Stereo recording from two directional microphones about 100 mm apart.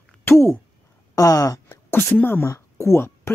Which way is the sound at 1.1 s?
35° left (ahead or behind).